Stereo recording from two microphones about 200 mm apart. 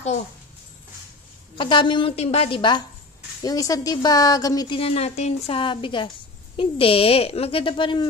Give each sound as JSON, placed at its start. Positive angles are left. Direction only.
{"t": 1.6, "sound": "a woman's voice", "side_deg": 25}